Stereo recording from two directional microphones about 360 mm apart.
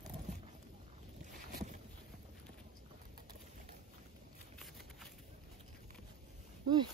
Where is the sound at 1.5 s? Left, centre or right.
Right.